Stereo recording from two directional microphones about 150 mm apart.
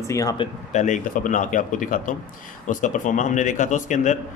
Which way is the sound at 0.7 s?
55° left (ahead or behind).